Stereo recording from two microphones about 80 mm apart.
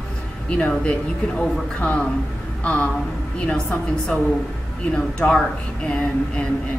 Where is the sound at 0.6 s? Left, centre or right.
Centre.